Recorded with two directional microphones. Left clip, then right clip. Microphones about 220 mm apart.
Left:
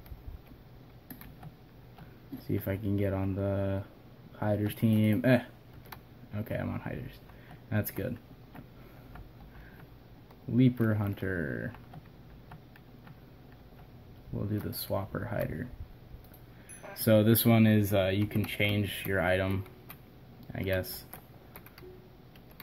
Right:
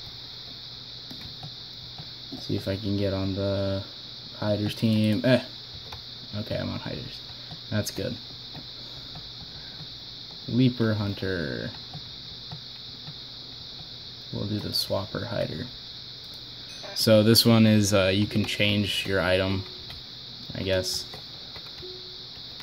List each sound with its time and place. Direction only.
2.6 s speech: 10° right (ahead or behind)
10.6 s speech: 10° right (ahead or behind)
14.5 s speech: 10° right (ahead or behind)
16.9 s speech: 15° right (ahead or behind)